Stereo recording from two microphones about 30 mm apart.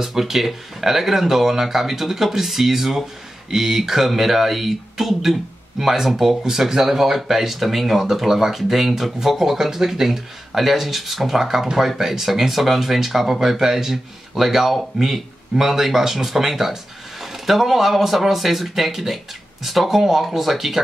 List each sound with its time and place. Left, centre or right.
0.0 s speech: centre
6.4 s speech: centre